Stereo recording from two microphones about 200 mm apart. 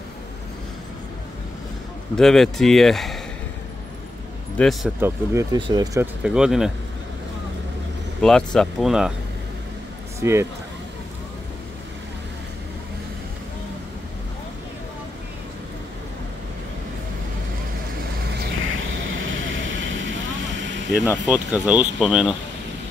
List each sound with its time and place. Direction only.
2.1 s speech: centre (ahead or behind)
4.6 s speech: centre (ahead or behind)
5.0 s speech: 15° right (ahead or behind)
5.9 s speech: 5° right (ahead or behind)
8.2 s speech: 5° left (ahead or behind)
10.2 s speech: 15° right (ahead or behind)
18.6 s vehicle: 80° right
21.3 s speech: 5° right (ahead or behind)